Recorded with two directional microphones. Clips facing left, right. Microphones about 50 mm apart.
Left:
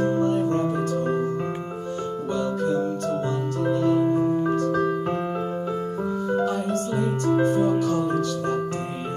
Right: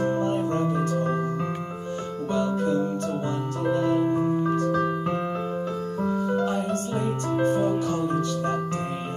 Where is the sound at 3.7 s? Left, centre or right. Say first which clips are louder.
Left 2 dB; right.